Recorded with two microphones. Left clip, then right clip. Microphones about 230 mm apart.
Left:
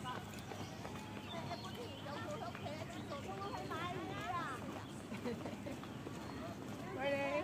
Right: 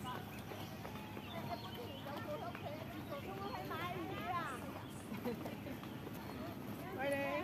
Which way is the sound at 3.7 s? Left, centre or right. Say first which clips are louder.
Even; right.